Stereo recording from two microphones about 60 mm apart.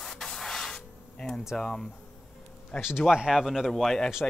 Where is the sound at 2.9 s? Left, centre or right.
Centre.